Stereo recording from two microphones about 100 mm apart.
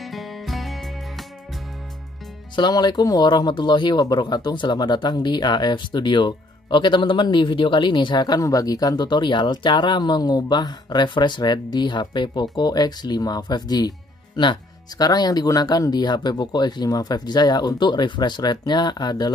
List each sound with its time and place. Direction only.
0.0 s music: centre (ahead or behind)
2.5 s speech: 45° left (ahead or behind)